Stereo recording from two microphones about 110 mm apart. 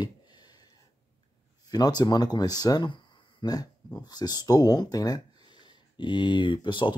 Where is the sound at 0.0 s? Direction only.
40° left (ahead or behind).